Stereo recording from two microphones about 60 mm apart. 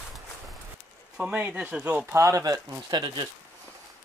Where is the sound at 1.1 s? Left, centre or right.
Centre.